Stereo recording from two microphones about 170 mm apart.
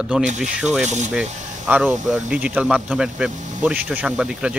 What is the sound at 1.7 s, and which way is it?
Speech, 5° right (ahead or behind).